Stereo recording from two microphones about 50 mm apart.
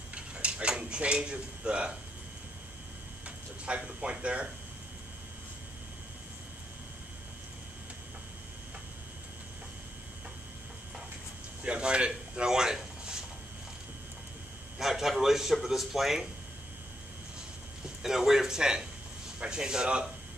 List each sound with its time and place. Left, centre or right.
0.1 s a sound: right
3.3 s speech: right
11.6 s speech: right
14.8 s speech: centre
18.0 s speech: centre